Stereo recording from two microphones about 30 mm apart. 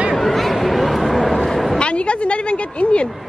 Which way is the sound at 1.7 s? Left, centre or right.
Left.